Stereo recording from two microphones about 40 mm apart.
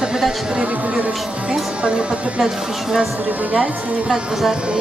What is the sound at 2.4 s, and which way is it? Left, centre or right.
Speech, centre.